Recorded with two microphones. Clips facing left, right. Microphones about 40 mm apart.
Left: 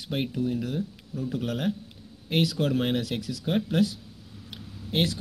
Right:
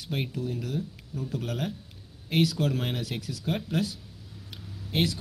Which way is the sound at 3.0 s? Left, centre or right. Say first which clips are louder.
Left 2 dB; left.